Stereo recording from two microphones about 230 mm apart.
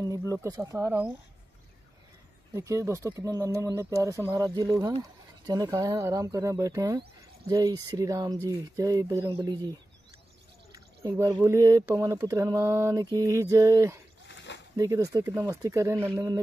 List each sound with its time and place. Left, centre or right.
0.0 s speech: centre
2.5 s speech: centre
14.2 s a sound: left
14.8 s speech: centre